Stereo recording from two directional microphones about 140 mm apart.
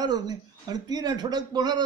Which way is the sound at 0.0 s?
30° right (ahead or behind).